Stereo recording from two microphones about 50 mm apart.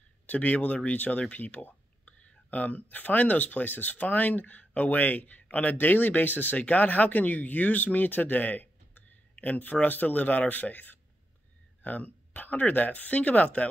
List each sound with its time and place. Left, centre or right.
0.3 s speech: left